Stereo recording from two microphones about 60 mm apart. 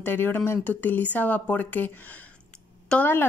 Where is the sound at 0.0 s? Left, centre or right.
Left.